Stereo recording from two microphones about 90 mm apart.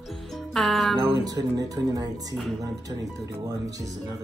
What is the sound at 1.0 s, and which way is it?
Speech, 45° right (ahead or behind).